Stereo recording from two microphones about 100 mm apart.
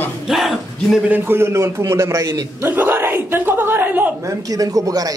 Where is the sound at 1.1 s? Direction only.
25° right (ahead or behind).